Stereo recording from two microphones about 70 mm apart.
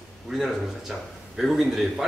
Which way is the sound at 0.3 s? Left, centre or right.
Centre.